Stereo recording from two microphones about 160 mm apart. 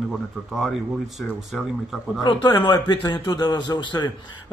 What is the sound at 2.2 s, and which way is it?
A man's voice, 30° left (ahead or behind).